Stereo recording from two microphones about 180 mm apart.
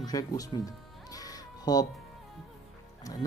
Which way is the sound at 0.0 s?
20° left (ahead or behind).